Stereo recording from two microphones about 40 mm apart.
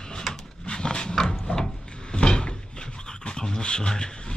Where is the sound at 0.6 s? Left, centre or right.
Left.